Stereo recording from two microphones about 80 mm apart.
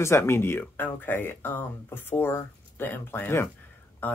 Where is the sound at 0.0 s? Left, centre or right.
Left.